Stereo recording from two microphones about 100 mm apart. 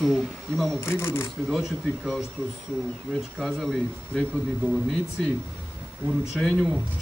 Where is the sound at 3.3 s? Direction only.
Centre (ahead or behind).